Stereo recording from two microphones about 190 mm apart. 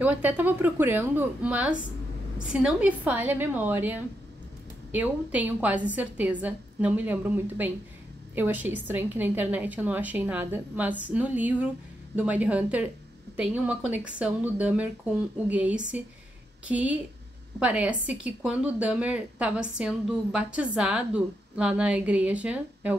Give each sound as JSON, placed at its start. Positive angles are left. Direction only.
{"t": 0.0, "sound": "speech", "side_deg": -10}